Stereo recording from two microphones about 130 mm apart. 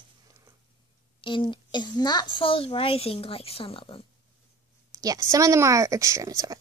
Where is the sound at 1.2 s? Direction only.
40° left (ahead or behind).